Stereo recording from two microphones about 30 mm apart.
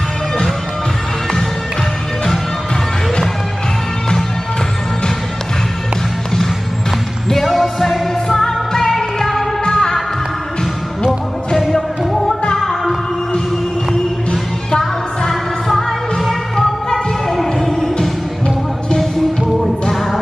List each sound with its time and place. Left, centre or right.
7.4 s music: centre
8.5 s music: centre
8.9 s music: centre
9.7 s music: left
12.5 s music: centre
14.3 s music: centre
16.3 s music: centre
19.1 s music: centre